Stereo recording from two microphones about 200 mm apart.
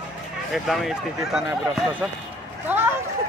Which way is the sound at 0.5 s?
Centre (ahead or behind).